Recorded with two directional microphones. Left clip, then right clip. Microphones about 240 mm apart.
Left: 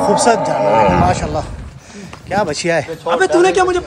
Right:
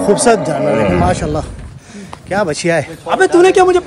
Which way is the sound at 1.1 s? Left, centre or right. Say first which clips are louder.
Right 1 dB; centre.